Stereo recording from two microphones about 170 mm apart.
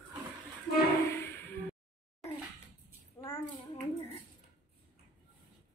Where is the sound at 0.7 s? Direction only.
55° left (ahead or behind).